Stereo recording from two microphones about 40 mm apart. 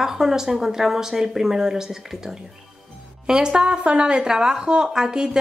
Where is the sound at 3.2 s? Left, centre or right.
Centre.